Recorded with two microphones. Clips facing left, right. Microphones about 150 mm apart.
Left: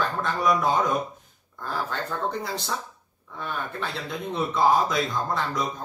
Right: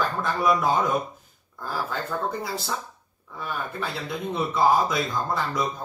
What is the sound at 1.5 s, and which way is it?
Speech, 5° right (ahead or behind).